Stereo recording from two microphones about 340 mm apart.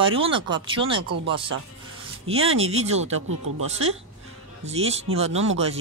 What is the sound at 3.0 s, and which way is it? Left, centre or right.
Speech, right.